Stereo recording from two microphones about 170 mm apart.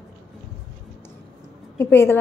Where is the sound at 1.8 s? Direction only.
15° left (ahead or behind).